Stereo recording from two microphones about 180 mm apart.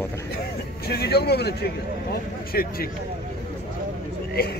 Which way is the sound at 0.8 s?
65° left (ahead or behind).